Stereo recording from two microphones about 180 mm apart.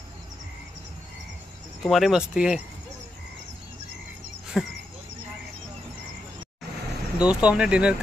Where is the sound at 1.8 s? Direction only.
Centre (ahead or behind).